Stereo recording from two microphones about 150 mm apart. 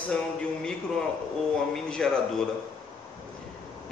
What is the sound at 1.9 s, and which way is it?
Speech, 5° left (ahead or behind).